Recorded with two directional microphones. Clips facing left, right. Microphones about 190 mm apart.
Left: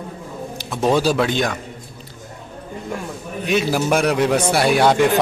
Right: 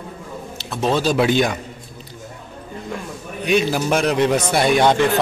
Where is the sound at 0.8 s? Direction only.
10° left (ahead or behind).